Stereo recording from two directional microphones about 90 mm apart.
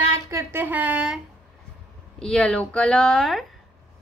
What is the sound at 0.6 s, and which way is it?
Speech, 20° right (ahead or behind).